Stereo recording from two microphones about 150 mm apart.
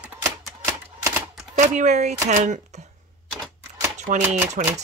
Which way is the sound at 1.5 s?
55° right (ahead or behind).